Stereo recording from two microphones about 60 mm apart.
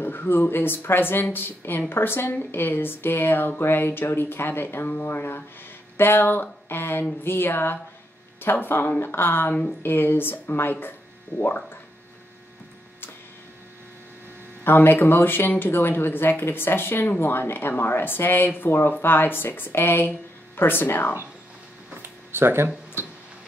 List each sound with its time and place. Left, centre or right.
0.0 s speech: left
14.6 s speech: left
21.9 s a sound: right